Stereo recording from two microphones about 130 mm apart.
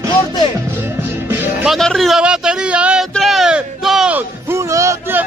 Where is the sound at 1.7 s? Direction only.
Centre (ahead or behind).